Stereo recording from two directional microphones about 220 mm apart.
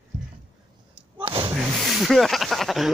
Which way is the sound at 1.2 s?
25° right (ahead or behind).